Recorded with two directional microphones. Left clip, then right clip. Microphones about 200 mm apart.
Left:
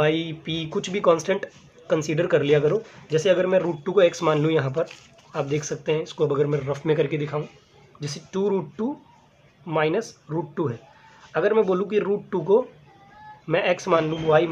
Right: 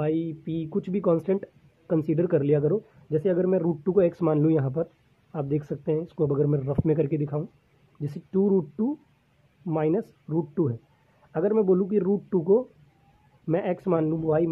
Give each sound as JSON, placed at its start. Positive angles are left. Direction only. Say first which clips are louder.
{"t": 0.0, "sound": "speech", "louder": "left 5 dB", "side_deg": -35}
{"t": 9.7, "sound": "speech", "louder": "left 3 dB", "side_deg": -40}
{"t": 10.3, "sound": "speech", "louder": "even", "side_deg": -30}
{"t": 11.3, "sound": "speech", "louder": "left 2 dB", "side_deg": -40}
{"t": 13.5, "sound": "speech", "louder": "left 5 dB", "side_deg": -40}